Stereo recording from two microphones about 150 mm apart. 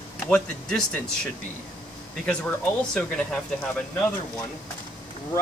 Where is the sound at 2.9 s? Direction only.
5° left (ahead or behind).